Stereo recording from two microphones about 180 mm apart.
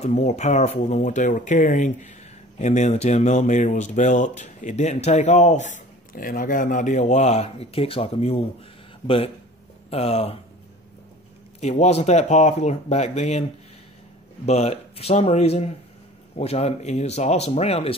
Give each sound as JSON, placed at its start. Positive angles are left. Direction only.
{"t": 0.0, "sound": "speech", "side_deg": 40}
{"t": 11.6, "sound": "speech", "side_deg": 40}